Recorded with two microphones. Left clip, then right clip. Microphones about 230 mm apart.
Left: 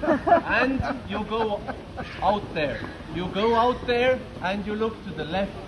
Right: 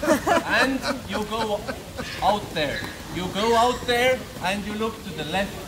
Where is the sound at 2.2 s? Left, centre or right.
Centre.